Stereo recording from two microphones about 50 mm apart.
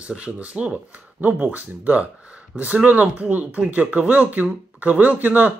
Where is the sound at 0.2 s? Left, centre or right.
Right.